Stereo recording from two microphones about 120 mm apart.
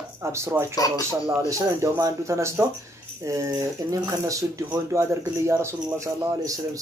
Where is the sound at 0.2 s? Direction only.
25° right (ahead or behind).